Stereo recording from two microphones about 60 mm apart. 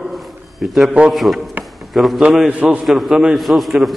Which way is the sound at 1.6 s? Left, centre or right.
Centre.